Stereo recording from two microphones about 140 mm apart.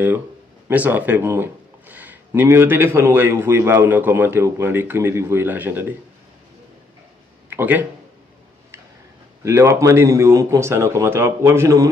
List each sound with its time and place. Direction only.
0.7 s speech: 10° right (ahead or behind)
7.4 s a sound: 15° right (ahead or behind)
9.4 s speech: 20° right (ahead or behind)